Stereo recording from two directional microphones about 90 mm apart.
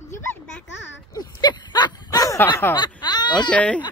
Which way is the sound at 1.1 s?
50° left (ahead or behind).